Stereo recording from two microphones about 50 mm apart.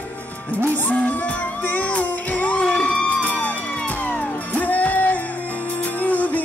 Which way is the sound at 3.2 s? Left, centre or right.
Left.